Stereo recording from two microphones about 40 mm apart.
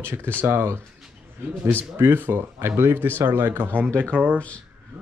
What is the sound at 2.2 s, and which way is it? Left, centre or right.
Speech, right.